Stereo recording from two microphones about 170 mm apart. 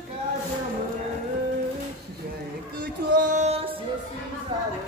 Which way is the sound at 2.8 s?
45° right (ahead or behind).